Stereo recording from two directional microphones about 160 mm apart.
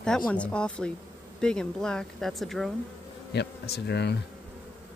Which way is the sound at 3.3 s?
90° left.